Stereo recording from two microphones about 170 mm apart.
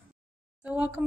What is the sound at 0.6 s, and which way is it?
Speech, 10° right (ahead or behind).